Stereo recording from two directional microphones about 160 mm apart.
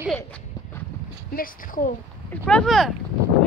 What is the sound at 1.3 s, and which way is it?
Speech, 60° left (ahead or behind).